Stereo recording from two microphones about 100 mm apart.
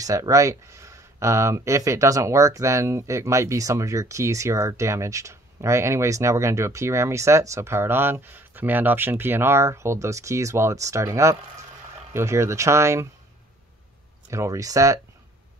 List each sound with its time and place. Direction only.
0.0 s speech: 35° right (ahead or behind)
14.3 s speech: 30° right (ahead or behind)